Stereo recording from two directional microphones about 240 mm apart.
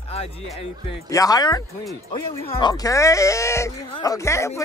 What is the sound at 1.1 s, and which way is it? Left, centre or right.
Speech, centre.